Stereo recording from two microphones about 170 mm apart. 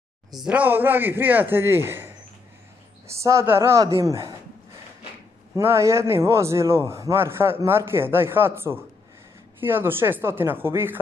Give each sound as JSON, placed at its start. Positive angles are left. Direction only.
{"t": 0.4, "sound": "a man's voice", "side_deg": -10}
{"t": 5.6, "sound": "a man's voice", "side_deg": -15}